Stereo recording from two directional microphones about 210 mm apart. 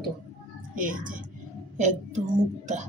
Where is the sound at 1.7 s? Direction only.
35° right (ahead or behind).